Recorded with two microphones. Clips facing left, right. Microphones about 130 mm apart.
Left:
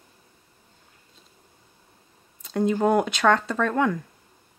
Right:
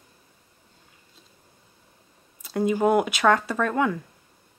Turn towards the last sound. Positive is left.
turn(degrees=-5)  # may be behind; listen again after turning